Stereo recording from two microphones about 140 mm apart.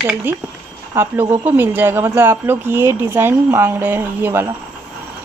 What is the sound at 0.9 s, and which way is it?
Speech, 15° right (ahead or behind).